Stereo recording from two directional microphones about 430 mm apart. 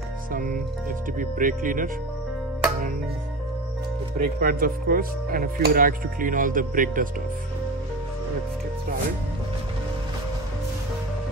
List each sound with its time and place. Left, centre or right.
0.3 s speech: centre
4.2 s speech: centre